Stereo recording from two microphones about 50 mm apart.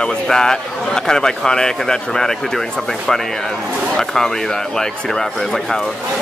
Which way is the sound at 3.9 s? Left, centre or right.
Centre.